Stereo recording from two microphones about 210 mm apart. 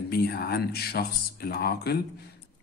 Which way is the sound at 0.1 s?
50° left (ahead or behind).